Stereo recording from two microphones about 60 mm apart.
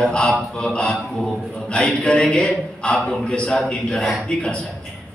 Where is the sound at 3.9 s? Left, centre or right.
Centre.